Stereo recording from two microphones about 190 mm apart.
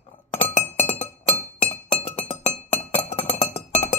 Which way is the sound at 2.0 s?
35° left (ahead or behind).